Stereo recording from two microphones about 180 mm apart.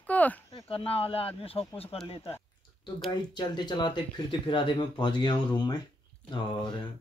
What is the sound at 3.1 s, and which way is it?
Speech, 25° left (ahead or behind).